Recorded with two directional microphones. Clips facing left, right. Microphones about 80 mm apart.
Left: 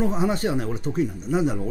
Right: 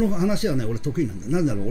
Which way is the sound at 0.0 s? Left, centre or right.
Left.